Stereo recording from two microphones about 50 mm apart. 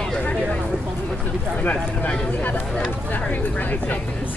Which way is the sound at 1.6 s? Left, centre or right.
Left.